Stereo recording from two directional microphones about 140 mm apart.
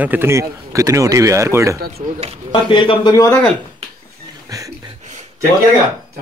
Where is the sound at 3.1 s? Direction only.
20° left (ahead or behind).